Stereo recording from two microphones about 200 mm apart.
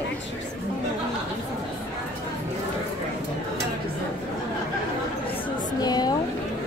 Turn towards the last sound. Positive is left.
turn(degrees=20)  # may be behind; listen again after turning